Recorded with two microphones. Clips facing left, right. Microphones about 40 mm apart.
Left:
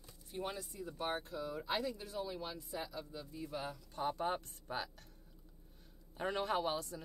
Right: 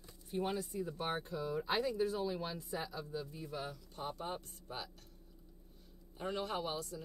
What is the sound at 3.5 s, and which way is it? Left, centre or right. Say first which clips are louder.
Speech: left 1 dB; centre.